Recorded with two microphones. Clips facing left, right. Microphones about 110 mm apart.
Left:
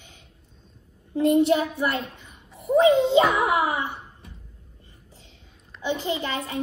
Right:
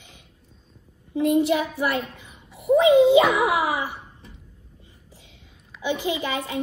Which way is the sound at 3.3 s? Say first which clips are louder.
Right 1 dB; 85° right.